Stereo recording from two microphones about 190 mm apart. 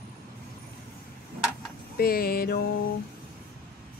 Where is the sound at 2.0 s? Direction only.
50° left (ahead or behind).